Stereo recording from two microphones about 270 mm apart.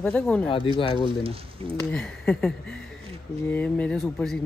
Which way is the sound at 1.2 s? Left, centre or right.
Right.